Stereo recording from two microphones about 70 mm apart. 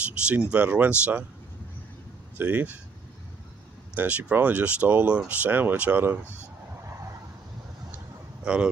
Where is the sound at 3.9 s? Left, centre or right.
Right.